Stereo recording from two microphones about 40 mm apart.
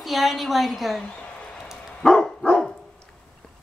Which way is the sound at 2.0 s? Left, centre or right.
Centre.